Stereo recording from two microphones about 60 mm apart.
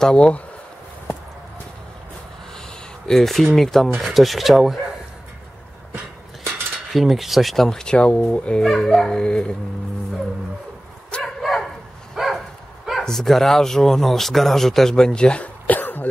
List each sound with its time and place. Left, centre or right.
0.0 s speech: centre
3.1 s speech: centre
6.9 s speech: centre
8.6 s speech: centre
11.1 s bow-wow: centre
11.4 s dog: centre
13.0 s speech: centre; by 16.1 s left